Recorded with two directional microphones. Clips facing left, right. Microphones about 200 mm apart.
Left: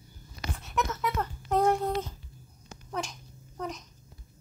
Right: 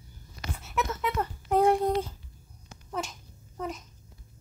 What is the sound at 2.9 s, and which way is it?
Babbling, centre (ahead or behind).